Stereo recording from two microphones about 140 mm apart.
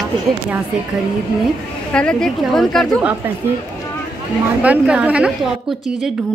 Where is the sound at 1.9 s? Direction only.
5° left (ahead or behind).